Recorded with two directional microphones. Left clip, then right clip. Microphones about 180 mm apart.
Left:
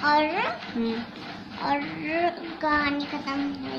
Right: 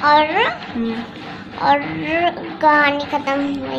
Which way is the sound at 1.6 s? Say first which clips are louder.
Right 11 dB; 35° right (ahead or behind).